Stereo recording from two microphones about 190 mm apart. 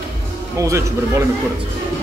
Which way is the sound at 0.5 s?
15° right (ahead or behind).